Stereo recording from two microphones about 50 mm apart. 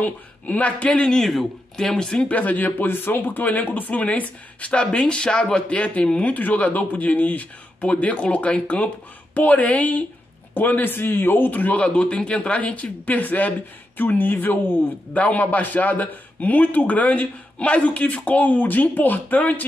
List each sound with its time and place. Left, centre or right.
0.0 s speech: left; by 2.2 s centre
2.2 s a man's voice: left